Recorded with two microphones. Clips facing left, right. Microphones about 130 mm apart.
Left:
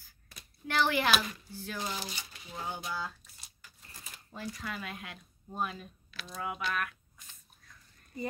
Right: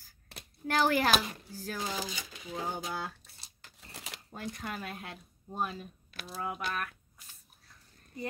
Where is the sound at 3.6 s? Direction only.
75° right (ahead or behind).